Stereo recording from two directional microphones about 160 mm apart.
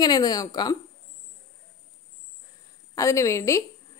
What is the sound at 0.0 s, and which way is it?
Speech, 25° left (ahead or behind).